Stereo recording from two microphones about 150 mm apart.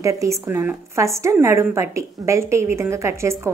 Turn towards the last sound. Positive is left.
turn(degrees=-20)  # may be behind; listen again after turning